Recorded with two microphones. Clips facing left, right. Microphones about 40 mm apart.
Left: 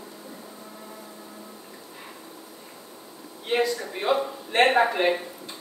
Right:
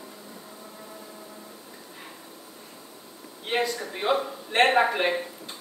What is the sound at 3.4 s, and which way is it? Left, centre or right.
A man's voice, centre.